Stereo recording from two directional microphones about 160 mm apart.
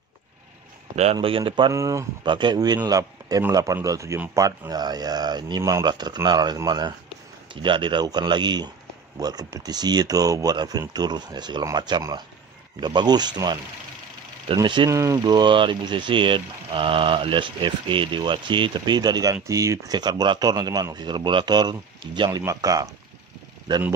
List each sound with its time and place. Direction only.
1.1 s speech: 35° right (ahead or behind)
1.7 s speech: 20° right (ahead or behind)